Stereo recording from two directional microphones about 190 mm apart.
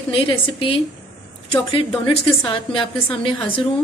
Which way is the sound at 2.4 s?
25° left (ahead or behind).